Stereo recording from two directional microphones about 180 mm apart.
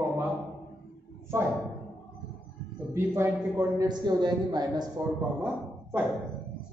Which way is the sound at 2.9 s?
15° right (ahead or behind).